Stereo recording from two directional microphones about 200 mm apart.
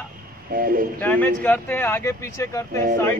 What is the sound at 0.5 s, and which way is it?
Speech, 45° right (ahead or behind).